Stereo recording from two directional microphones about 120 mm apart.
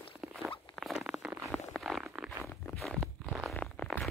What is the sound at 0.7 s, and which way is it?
Rodents, centre (ahead or behind).